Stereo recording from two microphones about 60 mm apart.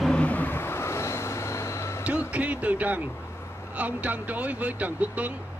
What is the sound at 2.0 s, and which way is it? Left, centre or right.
Speech, right.